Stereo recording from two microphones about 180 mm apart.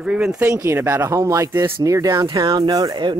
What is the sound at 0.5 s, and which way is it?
Speech, 15° right (ahead or behind).